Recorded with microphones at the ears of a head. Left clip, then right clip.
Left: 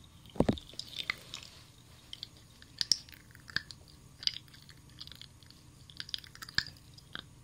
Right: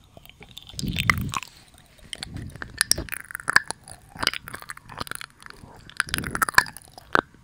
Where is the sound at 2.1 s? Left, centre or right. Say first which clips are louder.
Right 11 dB; right.